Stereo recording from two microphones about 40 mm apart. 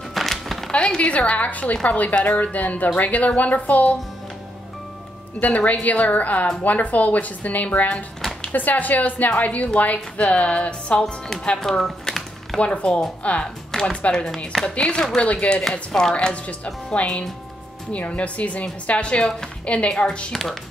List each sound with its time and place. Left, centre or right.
0.1 s music: centre
0.7 s speech: left
5.4 s speech: left
11.8 s typing: centre
12.5 s speech: left
13.7 s music: centre
14.1 s speech: centre
14.8 s speech: left
15.1 s speech: left
15.9 s speech: centre
16.4 s speech: left